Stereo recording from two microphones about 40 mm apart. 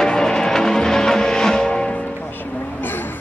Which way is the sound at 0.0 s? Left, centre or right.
Centre.